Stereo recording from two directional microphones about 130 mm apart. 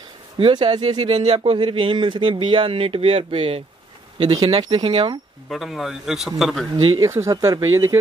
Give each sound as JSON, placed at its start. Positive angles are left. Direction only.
{"t": 0.4, "sound": "speech", "side_deg": -35}
{"t": 4.2, "sound": "speech", "side_deg": -30}
{"t": 5.5, "sound": "a man's voice", "side_deg": 0}
{"t": 6.8, "sound": "speech", "side_deg": -35}
{"t": 7.1, "sound": "speech", "side_deg": -25}